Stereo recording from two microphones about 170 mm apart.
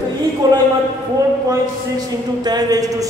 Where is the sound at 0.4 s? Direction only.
20° right (ahead or behind).